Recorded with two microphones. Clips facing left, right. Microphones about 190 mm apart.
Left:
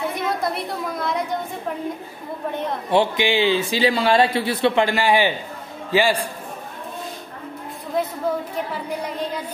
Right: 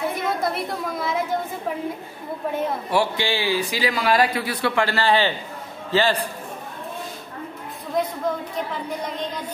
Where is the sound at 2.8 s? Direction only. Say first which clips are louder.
Left 6 dB; 20° left (ahead or behind).